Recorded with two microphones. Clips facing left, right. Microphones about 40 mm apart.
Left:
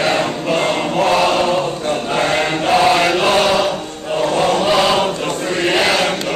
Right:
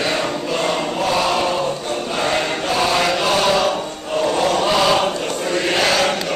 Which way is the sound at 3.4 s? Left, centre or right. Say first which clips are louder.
Left 1 dB; centre.